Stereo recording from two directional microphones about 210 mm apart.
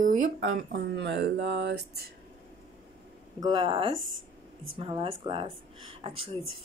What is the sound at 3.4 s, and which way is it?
Speech, 25° right (ahead or behind).